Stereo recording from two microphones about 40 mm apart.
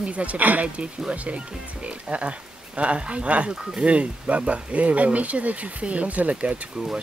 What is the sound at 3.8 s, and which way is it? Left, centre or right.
Speech, right.